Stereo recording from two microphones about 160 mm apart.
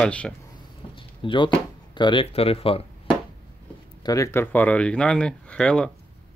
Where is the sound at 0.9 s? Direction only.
30° left (ahead or behind).